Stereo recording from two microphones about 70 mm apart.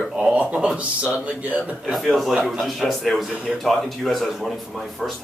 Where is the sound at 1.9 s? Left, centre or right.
Centre.